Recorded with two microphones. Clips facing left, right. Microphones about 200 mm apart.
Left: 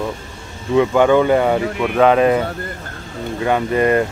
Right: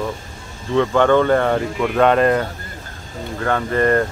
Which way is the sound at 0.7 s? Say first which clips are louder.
Left 2 dB; 10° left (ahead or behind).